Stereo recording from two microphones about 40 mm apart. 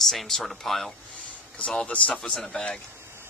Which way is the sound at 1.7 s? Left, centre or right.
Left.